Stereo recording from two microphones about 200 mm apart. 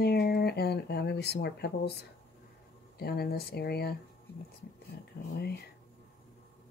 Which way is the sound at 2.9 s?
50° left (ahead or behind).